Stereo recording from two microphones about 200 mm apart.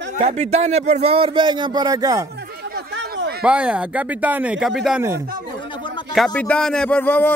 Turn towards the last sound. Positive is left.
turn(degrees=10)  # may be behind; listen again after turning